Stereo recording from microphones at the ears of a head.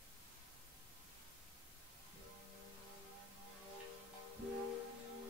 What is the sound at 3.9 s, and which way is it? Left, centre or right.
Music, left.